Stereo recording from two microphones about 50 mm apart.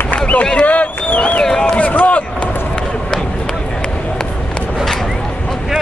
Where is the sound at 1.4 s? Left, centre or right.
Centre.